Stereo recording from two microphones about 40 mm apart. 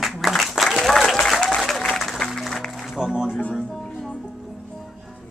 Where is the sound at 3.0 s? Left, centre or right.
Centre.